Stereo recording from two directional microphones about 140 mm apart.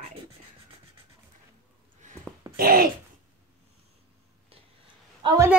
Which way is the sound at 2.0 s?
60° right (ahead or behind).